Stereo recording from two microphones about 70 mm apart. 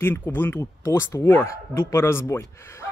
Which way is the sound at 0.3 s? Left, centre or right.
Left.